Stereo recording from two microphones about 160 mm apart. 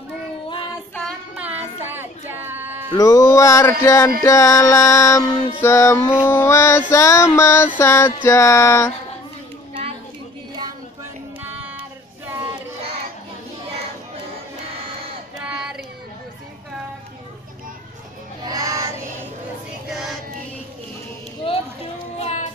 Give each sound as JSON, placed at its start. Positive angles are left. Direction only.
{"t": 1.3, "sound": "child singing", "side_deg": -10}
{"t": 2.9, "sound": "music", "side_deg": 20}
{"t": 5.6, "sound": "a sound", "side_deg": 15}
{"t": 11.4, "sound": "child singing", "side_deg": -10}
{"t": 15.3, "sound": "child singing", "side_deg": -5}
{"t": 18.4, "sound": "child singing", "side_deg": -20}
{"t": 19.9, "sound": "music", "side_deg": -5}
{"t": 22.2, "sound": "child singing", "side_deg": 45}